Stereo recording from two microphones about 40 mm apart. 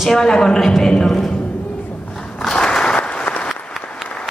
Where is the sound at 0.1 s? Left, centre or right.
Centre.